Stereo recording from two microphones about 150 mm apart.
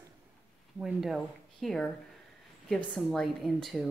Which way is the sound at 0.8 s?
5° right (ahead or behind).